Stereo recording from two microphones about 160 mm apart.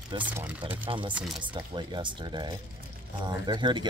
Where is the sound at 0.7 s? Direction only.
30° right (ahead or behind).